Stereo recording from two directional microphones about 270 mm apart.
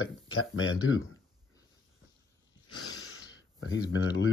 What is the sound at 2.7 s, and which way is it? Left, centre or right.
Gasp, left.